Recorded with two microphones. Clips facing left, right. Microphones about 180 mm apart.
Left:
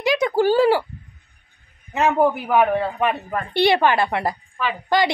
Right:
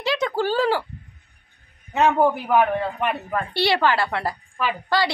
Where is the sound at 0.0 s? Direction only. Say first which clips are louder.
Left 5 dB; 15° left (ahead or behind).